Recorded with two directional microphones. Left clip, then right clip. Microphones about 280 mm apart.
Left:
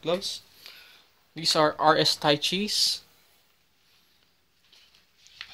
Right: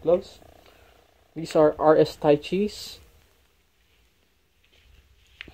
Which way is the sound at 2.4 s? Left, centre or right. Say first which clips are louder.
Left 3 dB; centre.